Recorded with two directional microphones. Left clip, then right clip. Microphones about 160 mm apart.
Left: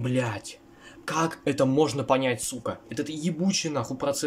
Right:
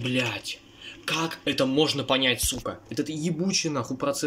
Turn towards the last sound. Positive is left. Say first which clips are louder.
# even
turn(degrees=0)  # may be behind; listen again after turning